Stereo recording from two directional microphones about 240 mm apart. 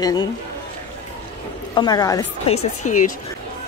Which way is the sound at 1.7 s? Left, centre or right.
Centre.